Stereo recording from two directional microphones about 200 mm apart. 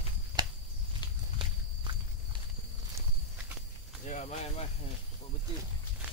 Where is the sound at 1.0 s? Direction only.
20° left (ahead or behind).